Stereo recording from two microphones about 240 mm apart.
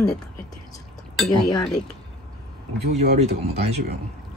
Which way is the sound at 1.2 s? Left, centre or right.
Centre.